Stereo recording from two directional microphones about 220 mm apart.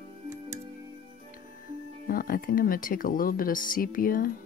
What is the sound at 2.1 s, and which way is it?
Speech, 40° left (ahead or behind).